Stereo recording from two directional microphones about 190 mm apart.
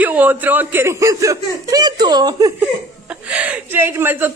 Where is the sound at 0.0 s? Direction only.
10° right (ahead or behind).